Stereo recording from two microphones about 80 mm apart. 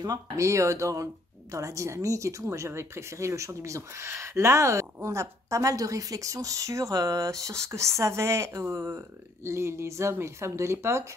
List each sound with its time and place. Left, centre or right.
0.0 s speech: right
0.5 s a woman's voice: right